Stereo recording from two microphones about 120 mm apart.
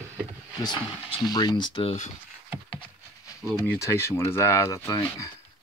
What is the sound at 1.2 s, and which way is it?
Speech, 35° left (ahead or behind).